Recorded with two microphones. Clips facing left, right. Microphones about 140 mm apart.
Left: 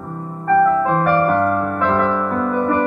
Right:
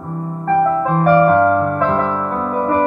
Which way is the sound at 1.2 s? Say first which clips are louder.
Right 4 dB; 35° right (ahead or behind).